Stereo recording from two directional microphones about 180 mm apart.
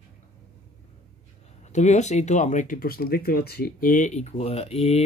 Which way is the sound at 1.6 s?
40° left (ahead or behind).